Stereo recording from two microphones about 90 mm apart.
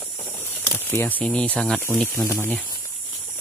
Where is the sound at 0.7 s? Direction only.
25° left (ahead or behind).